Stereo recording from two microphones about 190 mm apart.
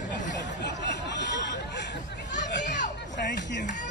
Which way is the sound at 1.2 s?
65° left (ahead or behind).